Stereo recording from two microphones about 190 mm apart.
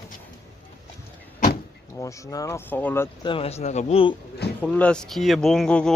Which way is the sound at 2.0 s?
15° left (ahead or behind).